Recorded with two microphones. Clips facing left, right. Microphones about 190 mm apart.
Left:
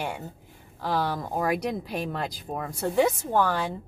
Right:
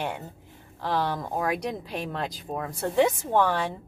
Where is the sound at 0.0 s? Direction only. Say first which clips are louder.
Right 1 dB; 5° left (ahead or behind).